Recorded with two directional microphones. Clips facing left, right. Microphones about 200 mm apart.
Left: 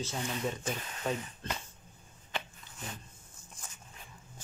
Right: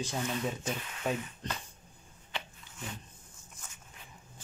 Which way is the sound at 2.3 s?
50° left (ahead or behind).